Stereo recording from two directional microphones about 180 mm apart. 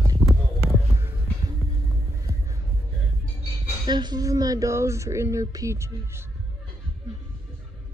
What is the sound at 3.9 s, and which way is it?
Speech, 25° right (ahead or behind).